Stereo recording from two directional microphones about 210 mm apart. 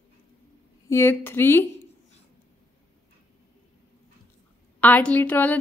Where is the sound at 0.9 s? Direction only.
10° left (ahead or behind).